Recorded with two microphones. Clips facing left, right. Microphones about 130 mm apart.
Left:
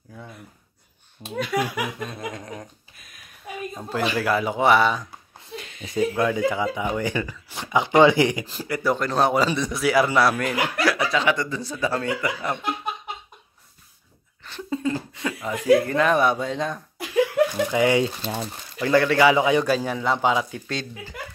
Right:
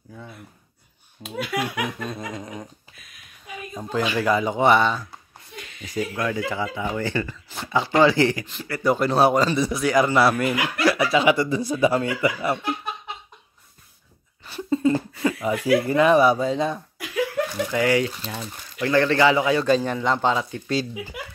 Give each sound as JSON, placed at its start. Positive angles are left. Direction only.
{"t": 0.1, "sound": "speech", "side_deg": 0}
{"t": 3.9, "sound": "speech", "side_deg": 5}
{"t": 5.5, "sound": "speech", "side_deg": 25}
{"t": 8.8, "sound": "speech", "side_deg": -5}
{"t": 9.3, "sound": "a man's voice", "side_deg": 10}
{"t": 9.6, "sound": "speech", "side_deg": 0}
{"t": 14.7, "sound": "cough", "side_deg": -5}
{"t": 15.6, "sound": "speech", "side_deg": -5}
{"t": 17.6, "sound": "speech", "side_deg": 20}
{"t": 18.8, "sound": "a man's voice", "side_deg": 10}
{"t": 19.7, "sound": "a man's voice", "side_deg": 5}
{"t": 20.6, "sound": "speech", "side_deg": -10}